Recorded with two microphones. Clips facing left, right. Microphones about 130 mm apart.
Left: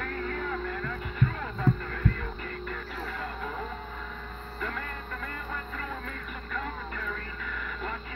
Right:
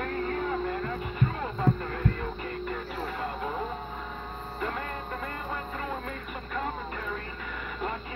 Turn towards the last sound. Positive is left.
turn(degrees=-25)  # may be behind; listen again after turning